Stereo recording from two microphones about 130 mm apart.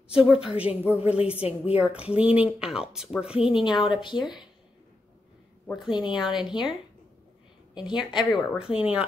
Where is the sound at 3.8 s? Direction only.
40° left (ahead or behind).